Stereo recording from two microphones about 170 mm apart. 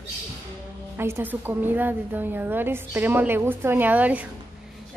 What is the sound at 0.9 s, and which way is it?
A woman's voice, 15° right (ahead or behind).